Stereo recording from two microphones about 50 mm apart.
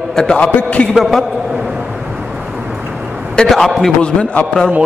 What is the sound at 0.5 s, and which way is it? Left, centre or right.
Speech, left.